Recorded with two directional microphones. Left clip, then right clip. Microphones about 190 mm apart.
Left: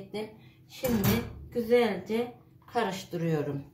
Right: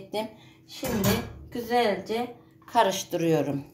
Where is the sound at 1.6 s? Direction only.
50° right (ahead or behind).